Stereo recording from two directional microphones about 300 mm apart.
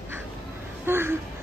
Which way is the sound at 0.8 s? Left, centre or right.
Centre.